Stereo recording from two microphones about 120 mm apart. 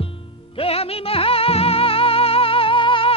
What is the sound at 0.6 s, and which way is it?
Music, 55° left (ahead or behind).